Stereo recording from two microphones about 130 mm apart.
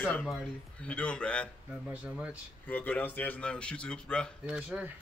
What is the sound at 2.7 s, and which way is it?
A man's voice, 15° left (ahead or behind).